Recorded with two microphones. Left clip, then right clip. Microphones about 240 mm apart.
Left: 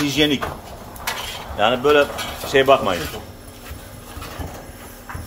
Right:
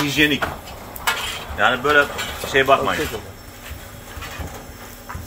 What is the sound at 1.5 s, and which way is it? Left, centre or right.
Speech, left.